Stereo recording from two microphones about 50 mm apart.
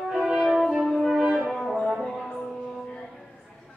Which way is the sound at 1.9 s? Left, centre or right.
Centre.